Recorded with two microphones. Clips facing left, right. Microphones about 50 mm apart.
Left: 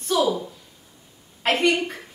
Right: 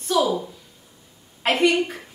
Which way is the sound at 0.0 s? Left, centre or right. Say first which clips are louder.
Right 1 dB; centre.